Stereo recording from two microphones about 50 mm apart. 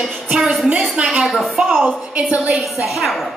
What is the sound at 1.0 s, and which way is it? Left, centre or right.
Speech, centre.